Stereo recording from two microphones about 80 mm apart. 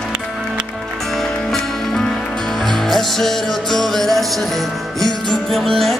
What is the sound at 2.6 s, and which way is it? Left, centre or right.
Music, centre.